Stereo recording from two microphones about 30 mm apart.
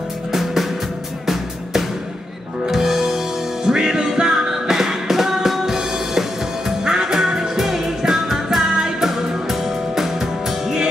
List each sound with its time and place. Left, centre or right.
0.3 s music: centre